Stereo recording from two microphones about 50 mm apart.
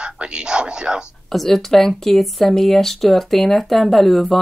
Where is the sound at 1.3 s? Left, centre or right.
Centre.